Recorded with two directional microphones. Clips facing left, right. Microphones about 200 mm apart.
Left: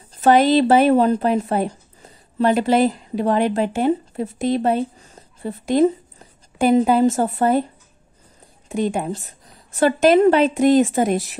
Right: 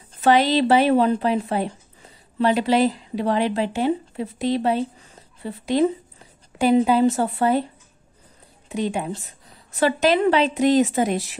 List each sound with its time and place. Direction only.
0.1 s a woman's voice: 45° left (ahead or behind)
8.6 s a woman's voice: 45° left (ahead or behind)